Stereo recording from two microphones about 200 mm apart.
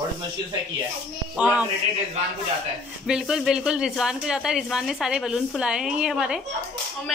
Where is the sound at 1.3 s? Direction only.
5° right (ahead or behind).